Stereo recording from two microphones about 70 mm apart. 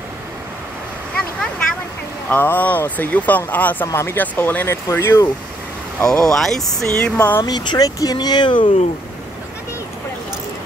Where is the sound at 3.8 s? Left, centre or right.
Left.